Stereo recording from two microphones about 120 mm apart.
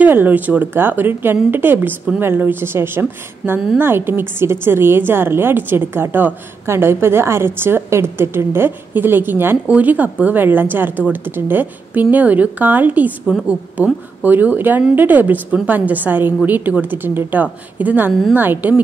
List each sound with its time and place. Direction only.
0.0 s speech: 15° right (ahead or behind)